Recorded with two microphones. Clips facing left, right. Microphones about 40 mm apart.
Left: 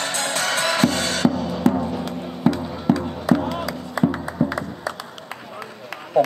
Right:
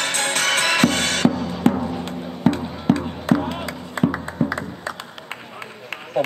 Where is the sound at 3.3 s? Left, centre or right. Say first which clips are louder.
Even; right.